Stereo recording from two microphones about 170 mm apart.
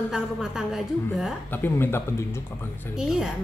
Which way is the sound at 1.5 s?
10° left (ahead or behind).